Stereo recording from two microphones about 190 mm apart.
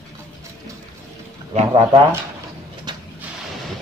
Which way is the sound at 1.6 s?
30° right (ahead or behind).